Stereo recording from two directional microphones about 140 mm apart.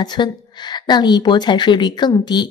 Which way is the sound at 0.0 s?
30° left (ahead or behind).